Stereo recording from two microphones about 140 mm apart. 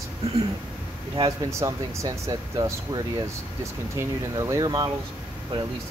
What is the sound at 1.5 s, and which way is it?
Speech, 25° right (ahead or behind).